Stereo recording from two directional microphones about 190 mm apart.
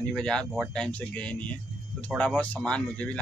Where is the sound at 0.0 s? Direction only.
5° left (ahead or behind).